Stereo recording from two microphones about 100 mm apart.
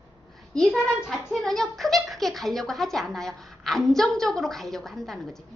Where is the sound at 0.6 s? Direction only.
Centre (ahead or behind).